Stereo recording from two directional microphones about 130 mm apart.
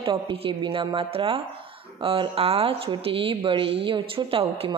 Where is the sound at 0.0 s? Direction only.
40° right (ahead or behind).